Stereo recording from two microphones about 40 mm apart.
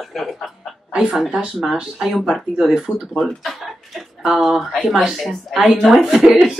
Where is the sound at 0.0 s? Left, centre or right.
Centre.